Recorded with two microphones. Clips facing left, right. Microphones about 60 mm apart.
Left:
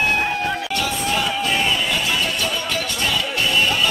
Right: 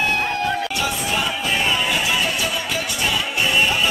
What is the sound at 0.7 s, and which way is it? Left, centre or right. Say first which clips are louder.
Music: left 1 dB; centre.